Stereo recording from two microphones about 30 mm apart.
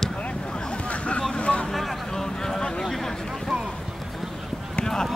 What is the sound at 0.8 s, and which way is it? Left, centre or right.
Vehicle, left.